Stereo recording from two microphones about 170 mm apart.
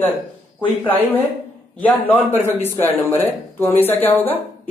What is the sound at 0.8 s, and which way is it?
A woman's voice, 10° left (ahead or behind).